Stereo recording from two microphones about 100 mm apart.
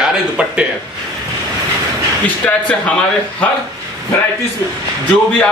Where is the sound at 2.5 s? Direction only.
15° left (ahead or behind).